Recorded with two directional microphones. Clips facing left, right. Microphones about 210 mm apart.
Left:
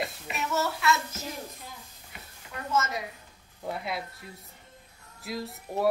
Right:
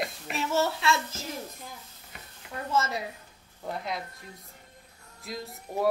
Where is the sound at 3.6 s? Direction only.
5° left (ahead or behind).